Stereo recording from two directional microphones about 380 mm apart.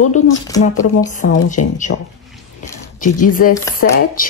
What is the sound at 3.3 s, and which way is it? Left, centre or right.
Speech, left.